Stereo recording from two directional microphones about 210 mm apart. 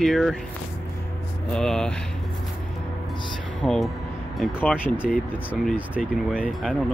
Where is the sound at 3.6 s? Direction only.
Centre (ahead or behind).